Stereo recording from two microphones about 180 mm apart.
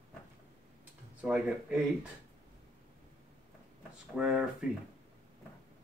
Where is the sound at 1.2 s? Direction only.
5° right (ahead or behind).